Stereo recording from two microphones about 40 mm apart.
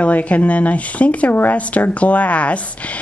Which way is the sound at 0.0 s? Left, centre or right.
Left.